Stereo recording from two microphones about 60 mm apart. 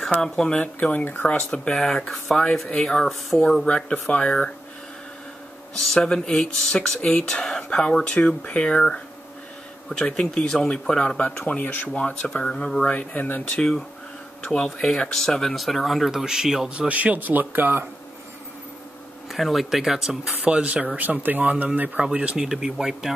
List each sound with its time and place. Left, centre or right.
0.2 s speech: centre
2.0 s speech: centre
3.6 s speech: centre
5.9 s speech: centre
12.9 s speech: left
14.4 s speech: centre
16.7 s speech: right
19.3 s speech: centre
20.4 s speech: right; by 23.1 s centre